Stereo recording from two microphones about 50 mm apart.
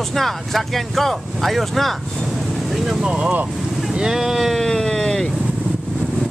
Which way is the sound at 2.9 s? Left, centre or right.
Centre.